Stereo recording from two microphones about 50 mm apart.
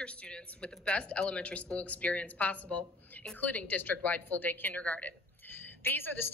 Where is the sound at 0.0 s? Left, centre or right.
Left.